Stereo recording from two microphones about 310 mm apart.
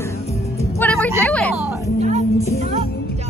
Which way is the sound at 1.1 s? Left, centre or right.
Centre.